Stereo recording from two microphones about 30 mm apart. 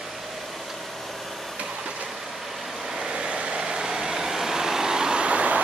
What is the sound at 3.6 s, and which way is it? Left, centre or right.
Vehicle, centre.